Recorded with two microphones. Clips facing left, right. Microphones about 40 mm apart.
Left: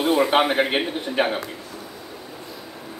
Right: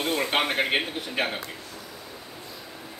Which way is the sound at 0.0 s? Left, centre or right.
Centre.